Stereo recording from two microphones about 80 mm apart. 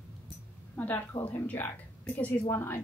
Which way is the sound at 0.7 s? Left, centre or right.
Left.